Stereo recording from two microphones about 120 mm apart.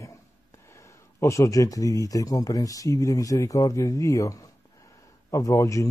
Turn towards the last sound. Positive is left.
turn(degrees=25)  # may be behind; listen again after turning